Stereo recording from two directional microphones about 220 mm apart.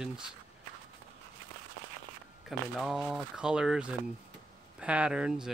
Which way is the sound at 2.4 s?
Centre (ahead or behind).